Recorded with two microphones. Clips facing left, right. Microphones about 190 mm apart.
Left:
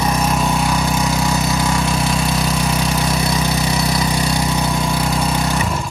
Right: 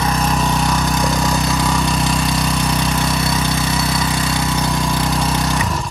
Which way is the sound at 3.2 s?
15° left (ahead or behind).